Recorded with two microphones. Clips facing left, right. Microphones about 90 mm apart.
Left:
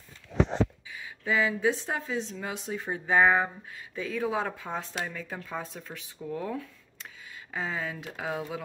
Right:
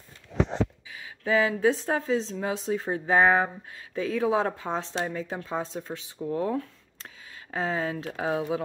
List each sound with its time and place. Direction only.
1.2 s speech: 35° right (ahead or behind)